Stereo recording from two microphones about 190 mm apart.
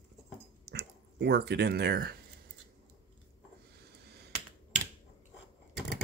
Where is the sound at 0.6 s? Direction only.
60° right (ahead or behind).